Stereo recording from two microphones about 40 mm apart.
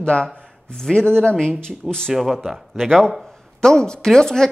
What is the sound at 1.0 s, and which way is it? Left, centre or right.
Speech, left.